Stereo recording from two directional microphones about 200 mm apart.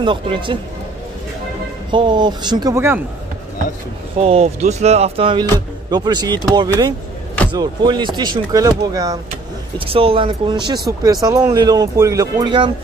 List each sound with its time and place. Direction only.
0.0 s speech: 25° right (ahead or behind)
1.9 s speech: 25° right (ahead or behind)
4.2 s speech: 30° right (ahead or behind)